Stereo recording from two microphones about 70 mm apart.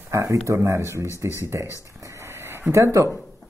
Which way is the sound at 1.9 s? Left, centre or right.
Right.